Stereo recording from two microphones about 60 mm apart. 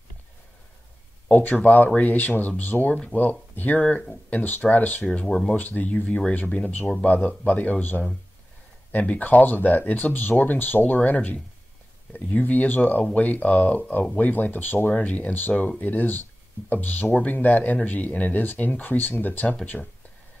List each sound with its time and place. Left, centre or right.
1.3 s speech: left
3.8 s speech: centre
4.4 s speech: left
5.0 s speech: centre
5.5 s speech: left
6.0 s speech: centre
19.7 s speech: centre